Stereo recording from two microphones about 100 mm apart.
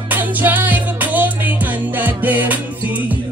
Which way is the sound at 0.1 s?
15° right (ahead or behind).